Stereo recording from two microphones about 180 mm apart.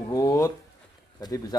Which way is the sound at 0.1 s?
20° left (ahead or behind).